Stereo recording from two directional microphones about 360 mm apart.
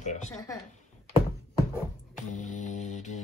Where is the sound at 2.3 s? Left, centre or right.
Left.